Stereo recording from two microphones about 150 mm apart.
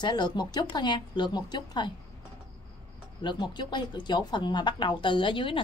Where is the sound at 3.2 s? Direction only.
30° left (ahead or behind).